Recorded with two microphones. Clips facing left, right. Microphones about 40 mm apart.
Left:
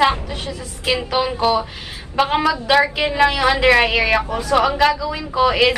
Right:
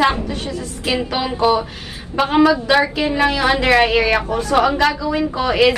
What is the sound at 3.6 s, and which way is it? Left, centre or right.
Speech, centre.